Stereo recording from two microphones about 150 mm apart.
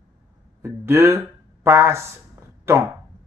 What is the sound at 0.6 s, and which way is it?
Speech, 15° right (ahead or behind).